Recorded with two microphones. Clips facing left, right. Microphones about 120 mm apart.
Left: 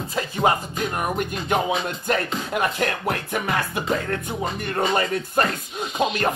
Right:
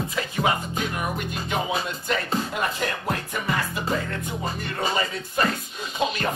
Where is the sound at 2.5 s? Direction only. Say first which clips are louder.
Left 4 dB; 60° left (ahead or behind).